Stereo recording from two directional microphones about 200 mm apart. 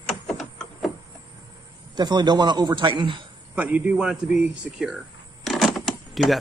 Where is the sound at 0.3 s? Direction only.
Centre (ahead or behind).